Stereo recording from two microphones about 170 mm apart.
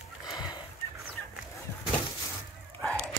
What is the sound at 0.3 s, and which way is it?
Fowl, 25° left (ahead or behind).